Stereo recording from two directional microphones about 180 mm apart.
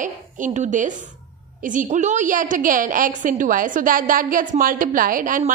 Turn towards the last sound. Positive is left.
turn(degrees=-50)  # may be behind; listen again after turning